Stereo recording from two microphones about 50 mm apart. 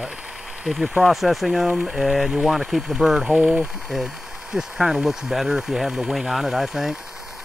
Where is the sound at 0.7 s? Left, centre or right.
Centre.